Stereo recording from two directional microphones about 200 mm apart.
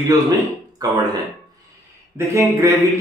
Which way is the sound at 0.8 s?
20° right (ahead or behind).